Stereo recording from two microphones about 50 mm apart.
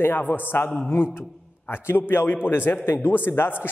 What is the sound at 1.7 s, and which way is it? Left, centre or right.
A man's voice, left.